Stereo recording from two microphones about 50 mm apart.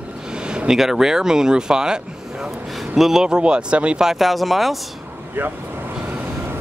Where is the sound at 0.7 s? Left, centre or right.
Centre.